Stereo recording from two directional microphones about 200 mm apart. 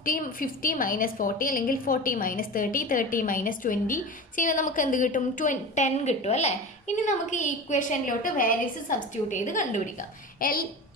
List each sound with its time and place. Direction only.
0.0 s a woman's voice: 45° left (ahead or behind)